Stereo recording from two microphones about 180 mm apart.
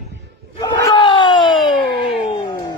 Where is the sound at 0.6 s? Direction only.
25° left (ahead or behind).